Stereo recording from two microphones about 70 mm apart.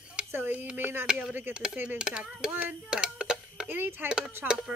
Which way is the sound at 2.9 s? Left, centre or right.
Centre.